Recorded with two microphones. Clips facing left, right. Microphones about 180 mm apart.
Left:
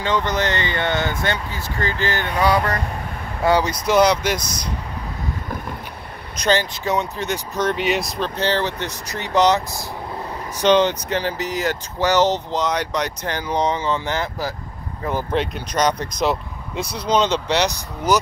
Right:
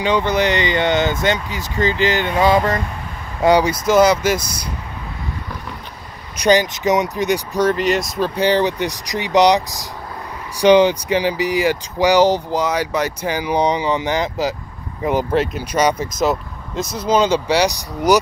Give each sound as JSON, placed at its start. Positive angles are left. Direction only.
{"t": 0.0, "sound": "speech", "side_deg": -10}
{"t": 3.8, "sound": "speech", "side_deg": -5}
{"t": 6.3, "sound": "speech", "side_deg": -15}
{"t": 7.7, "sound": "speech", "side_deg": 0}
{"t": 8.4, "sound": "speech", "side_deg": -15}
{"t": 10.6, "sound": "speech", "side_deg": -10}
{"t": 15.3, "sound": "speech", "side_deg": -5}